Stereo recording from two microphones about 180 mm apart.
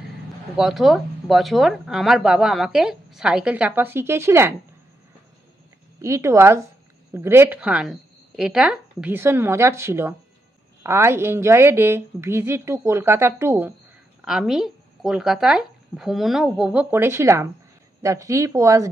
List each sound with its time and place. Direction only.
0.6 s speech: centre (ahead or behind)
5.9 s a woman's voice: 15° right (ahead or behind)
14.2 s a woman's voice: 5° right (ahead or behind)